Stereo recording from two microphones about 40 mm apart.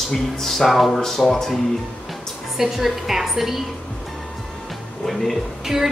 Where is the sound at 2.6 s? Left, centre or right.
Centre.